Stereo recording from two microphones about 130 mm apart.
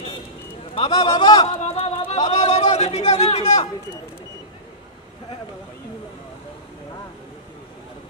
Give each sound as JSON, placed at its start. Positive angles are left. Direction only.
{"t": 0.9, "sound": "a man's voice", "side_deg": 30}
{"t": 1.4, "sound": "speech", "side_deg": 50}